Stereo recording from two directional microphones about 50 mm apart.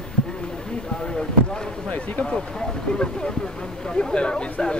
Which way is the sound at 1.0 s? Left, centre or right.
Centre.